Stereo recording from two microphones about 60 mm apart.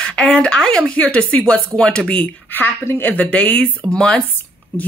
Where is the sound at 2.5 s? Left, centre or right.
Left; by 4.2 s centre.